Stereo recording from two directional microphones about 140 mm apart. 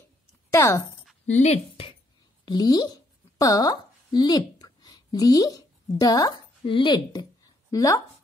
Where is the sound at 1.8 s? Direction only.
40° left (ahead or behind).